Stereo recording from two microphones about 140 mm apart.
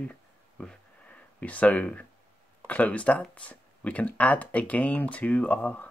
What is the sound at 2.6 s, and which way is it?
Speech, 10° left (ahead or behind).